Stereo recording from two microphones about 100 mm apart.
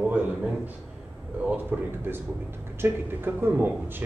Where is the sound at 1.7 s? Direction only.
15° right (ahead or behind).